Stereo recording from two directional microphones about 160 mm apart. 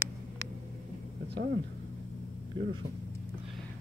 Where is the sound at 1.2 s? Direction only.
90° right.